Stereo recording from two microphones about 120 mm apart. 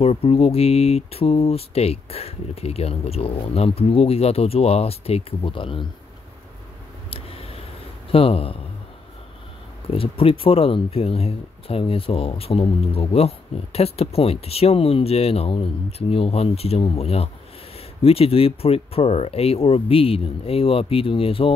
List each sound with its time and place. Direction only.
0.0 s speech: 55° left (ahead or behind)
7.1 s a sound: 50° left (ahead or behind)
8.1 s speech: 50° left (ahead or behind)
9.8 s speech: 50° left (ahead or behind)